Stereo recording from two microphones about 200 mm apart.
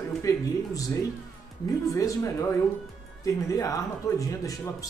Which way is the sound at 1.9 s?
15° left (ahead or behind).